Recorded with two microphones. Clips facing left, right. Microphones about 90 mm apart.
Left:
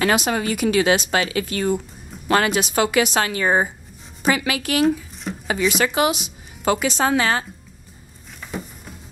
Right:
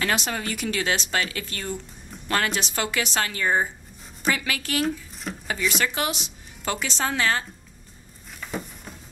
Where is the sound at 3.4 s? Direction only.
65° left (ahead or behind).